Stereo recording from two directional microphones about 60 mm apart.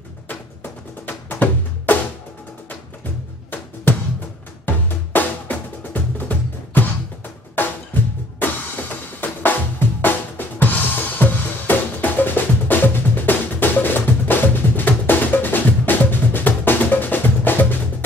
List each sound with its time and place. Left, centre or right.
1.0 s music: left
3.9 s music: left
7.5 s drum: left